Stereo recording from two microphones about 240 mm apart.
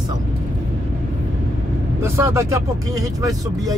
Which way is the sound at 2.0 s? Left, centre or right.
Centre.